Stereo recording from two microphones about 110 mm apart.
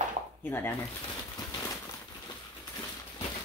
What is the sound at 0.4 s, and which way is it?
Speech, 20° left (ahead or behind).